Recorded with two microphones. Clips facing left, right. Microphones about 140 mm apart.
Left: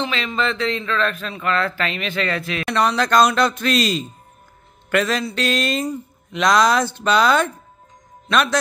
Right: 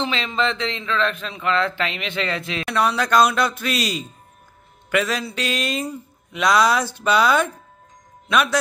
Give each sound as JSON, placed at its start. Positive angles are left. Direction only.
{"t": 0.0, "sound": "speech", "side_deg": -25}
{"t": 2.6, "sound": "speech", "side_deg": -5}